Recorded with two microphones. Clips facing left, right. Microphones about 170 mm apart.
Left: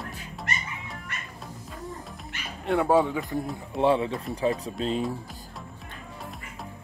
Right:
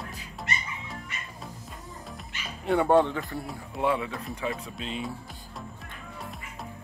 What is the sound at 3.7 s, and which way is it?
Speech, 30° left (ahead or behind).